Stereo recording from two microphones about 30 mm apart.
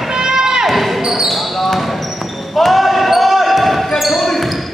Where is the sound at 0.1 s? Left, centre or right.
Right.